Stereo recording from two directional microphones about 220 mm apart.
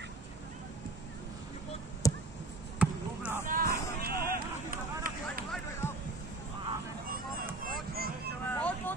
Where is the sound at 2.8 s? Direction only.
5° right (ahead or behind).